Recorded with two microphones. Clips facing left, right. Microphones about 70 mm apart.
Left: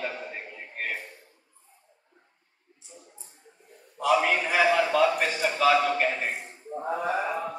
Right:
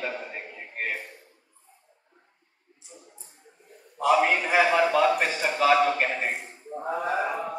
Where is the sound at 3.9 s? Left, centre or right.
Right.